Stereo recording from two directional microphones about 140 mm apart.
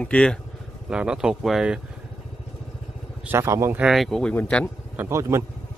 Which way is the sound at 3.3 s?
20° right (ahead or behind).